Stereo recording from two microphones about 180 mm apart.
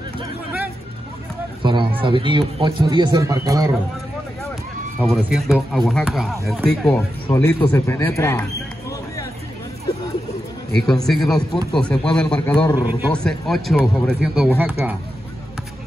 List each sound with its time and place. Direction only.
1.6 s a sound: 25° right (ahead or behind)
2.0 s speech: 25° right (ahead or behind)
5.0 s a man's voice: centre (ahead or behind)
10.7 s speech: 5° left (ahead or behind)